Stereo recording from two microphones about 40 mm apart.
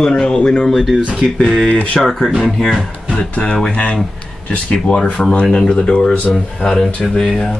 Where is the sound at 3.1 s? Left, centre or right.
Left.